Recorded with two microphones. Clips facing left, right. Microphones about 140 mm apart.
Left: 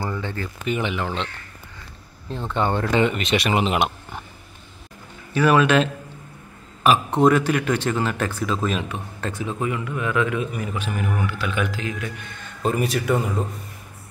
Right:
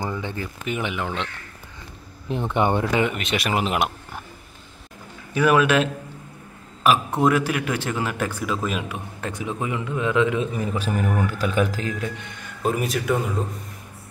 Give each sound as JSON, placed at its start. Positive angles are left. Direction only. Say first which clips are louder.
{"t": 0.0, "sound": "speech", "louder": "even", "side_deg": -15}
{"t": 2.2, "sound": "speech", "louder": "right 2 dB", "side_deg": -15}
{"t": 5.3, "sound": "speech", "louder": "left 1 dB", "side_deg": -10}
{"t": 7.2, "sound": "a man's voice", "louder": "left 3 dB", "side_deg": -5}
{"t": 12.0, "sound": "a man's voice", "louder": "right 2 dB", "side_deg": -25}
{"t": 12.6, "sound": "speech", "louder": "left 1 dB", "side_deg": 0}